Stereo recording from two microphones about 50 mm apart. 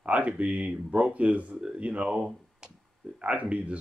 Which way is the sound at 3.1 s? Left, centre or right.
Right.